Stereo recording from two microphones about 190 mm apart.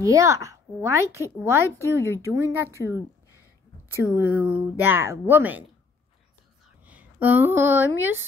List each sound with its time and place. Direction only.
0.0 s speech: 15° right (ahead or behind)
1.8 s speech: 15° left (ahead or behind)
2.3 s speech: 15° right (ahead or behind)
4.0 s speech: 10° right (ahead or behind)
6.8 s speech: 10° right (ahead or behind)